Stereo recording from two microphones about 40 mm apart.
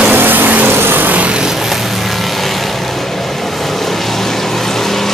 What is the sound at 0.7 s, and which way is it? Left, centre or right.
Vehicle, right.